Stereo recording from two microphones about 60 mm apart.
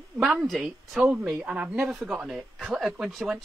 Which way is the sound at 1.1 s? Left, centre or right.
Right.